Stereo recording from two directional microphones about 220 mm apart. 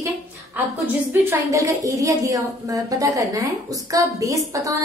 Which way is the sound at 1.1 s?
10° right (ahead or behind).